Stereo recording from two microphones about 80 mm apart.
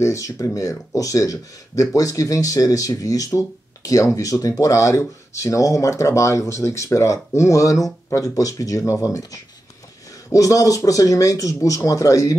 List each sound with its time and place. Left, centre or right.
0.0 s speech: left